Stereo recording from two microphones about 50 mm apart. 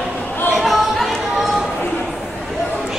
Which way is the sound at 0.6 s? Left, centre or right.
Centre.